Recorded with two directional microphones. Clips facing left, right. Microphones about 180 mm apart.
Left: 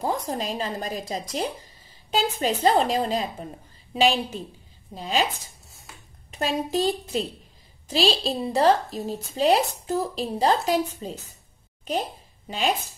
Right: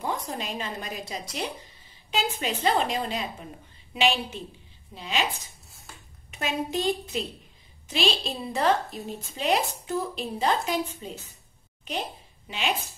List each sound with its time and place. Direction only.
0.0 s a woman's voice: 35° left (ahead or behind)
6.3 s a woman's voice: 35° left (ahead or behind)
7.9 s a woman's voice: 35° left (ahead or behind)
12.4 s a woman's voice: 40° left (ahead or behind)